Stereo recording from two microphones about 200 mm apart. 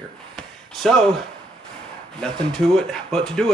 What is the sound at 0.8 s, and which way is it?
Speech, 5° left (ahead or behind).